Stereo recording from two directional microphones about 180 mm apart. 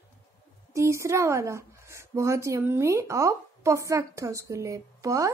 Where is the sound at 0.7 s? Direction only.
15° right (ahead or behind).